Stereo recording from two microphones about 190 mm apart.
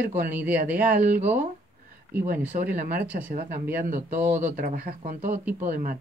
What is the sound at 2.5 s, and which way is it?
Speech, 45° right (ahead or behind).